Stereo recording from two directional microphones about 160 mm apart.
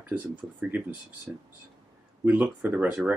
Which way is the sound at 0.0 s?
10° right (ahead or behind).